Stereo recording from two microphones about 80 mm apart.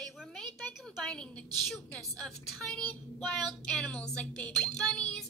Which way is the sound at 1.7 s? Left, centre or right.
Centre.